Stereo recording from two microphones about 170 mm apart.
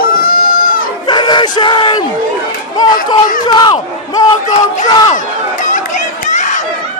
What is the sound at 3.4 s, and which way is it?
A man's voice, 25° left (ahead or behind).